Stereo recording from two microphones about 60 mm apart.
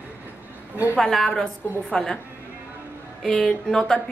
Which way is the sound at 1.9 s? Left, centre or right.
Centre.